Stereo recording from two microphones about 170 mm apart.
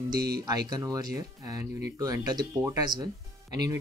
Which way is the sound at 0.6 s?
20° right (ahead or behind).